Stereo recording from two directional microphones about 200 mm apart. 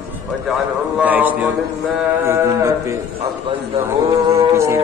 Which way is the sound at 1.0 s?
10° right (ahead or behind).